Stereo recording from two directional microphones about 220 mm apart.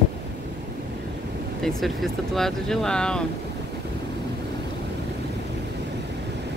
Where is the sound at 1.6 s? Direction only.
Centre (ahead or behind).